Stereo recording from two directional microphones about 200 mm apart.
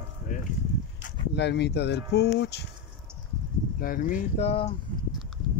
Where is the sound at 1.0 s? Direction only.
55° left (ahead or behind).